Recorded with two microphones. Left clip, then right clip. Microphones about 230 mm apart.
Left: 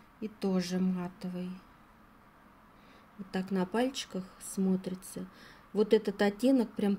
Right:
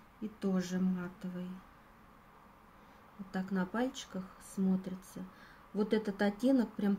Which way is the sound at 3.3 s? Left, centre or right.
Left.